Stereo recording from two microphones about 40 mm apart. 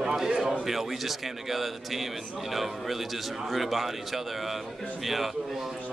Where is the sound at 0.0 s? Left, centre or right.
Centre.